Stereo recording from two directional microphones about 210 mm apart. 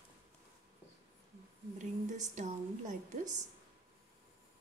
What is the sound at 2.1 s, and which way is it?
Speech, 35° right (ahead or behind).